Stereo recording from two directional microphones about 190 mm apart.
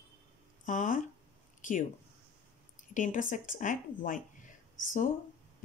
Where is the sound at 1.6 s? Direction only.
45° left (ahead or behind).